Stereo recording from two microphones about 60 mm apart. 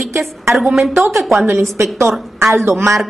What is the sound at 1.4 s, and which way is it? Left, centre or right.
A woman's voice, right.